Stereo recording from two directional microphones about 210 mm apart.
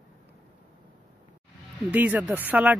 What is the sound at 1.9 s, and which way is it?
Speech, 5° right (ahead or behind).